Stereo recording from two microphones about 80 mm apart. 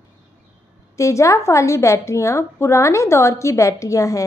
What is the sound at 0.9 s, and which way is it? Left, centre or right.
A woman's voice, left.